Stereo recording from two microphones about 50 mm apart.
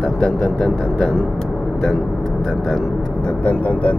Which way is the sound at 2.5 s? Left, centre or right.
Centre.